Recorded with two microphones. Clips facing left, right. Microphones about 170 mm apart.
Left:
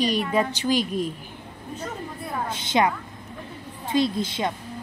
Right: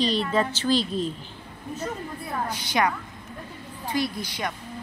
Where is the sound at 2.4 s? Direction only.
25° left (ahead or behind).